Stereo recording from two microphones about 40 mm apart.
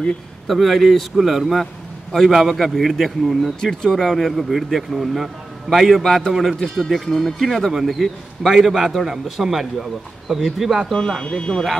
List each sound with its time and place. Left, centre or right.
0.5 s a man's voice: centre
3.6 s speech: centre
4.1 s a man's voice: centre
10.9 s speech: centre